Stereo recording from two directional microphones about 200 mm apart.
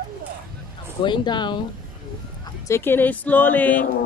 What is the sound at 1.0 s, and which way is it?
Speech, 20° left (ahead or behind).